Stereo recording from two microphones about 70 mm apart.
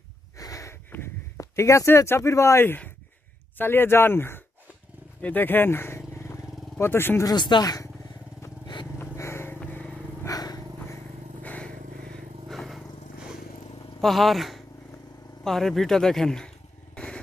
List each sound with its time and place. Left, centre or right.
0.4 s a sound: left
1.4 s speech: left
5.2 s vehicle: left
7.2 s speech: left
9.1 s vehicle: left
9.7 s vehicle: left
10.2 s vehicle: left
11.4 s vehicle: left
12.4 s a sound: centre
14.0 s speech: centre
15.4 s a sound: centre